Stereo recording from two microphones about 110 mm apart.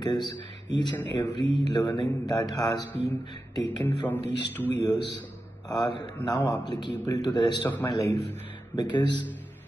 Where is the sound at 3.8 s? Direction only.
15° left (ahead or behind).